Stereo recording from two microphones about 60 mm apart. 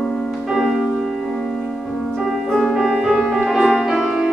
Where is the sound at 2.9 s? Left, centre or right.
Centre.